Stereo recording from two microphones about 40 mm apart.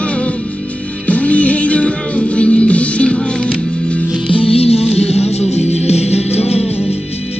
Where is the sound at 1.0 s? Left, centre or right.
Left.